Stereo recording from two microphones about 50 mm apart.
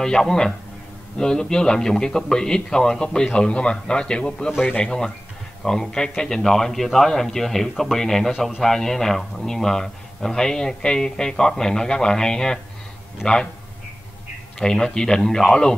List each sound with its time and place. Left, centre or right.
0.0 s a man's voice: centre
8.3 s a man's voice: centre
8.6 s a man's voice: centre
14.6 s a man's voice: centre